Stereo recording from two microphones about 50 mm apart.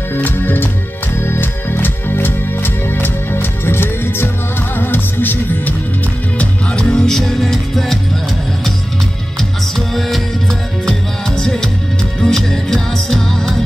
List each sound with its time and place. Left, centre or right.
0.1 s music: left
1.1 s music: left
6.7 s music: centre
7.0 s music: centre
9.4 s music: centre